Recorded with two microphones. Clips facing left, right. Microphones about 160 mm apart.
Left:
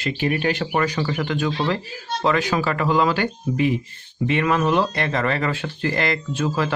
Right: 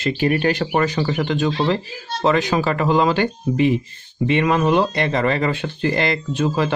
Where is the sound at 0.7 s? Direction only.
25° right (ahead or behind).